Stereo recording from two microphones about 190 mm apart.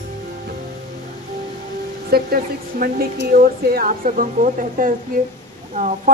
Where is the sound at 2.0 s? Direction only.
55° right (ahead or behind).